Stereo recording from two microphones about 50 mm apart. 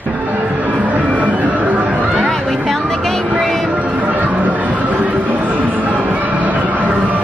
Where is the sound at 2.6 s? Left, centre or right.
Centre.